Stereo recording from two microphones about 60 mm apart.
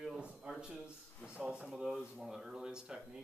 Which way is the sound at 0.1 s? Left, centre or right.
Centre.